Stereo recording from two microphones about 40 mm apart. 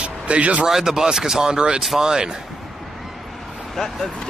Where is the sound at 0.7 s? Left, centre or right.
Centre.